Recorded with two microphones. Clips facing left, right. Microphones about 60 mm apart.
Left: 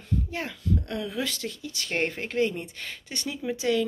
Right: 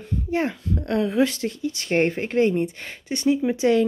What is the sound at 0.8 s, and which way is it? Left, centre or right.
Speech, right.